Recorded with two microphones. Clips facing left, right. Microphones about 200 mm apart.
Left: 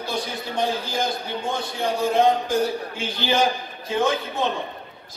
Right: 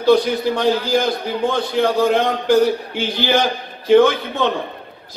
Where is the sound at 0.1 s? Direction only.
70° right (ahead or behind).